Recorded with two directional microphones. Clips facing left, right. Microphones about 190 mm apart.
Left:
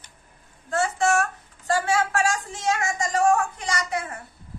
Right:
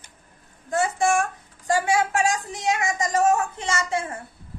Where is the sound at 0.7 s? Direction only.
15° right (ahead or behind).